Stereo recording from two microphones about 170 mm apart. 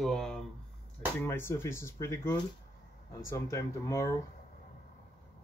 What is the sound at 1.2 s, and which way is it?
Speech, 15° left (ahead or behind).